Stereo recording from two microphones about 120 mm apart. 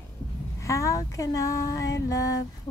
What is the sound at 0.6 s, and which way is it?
Female singing, 25° left (ahead or behind).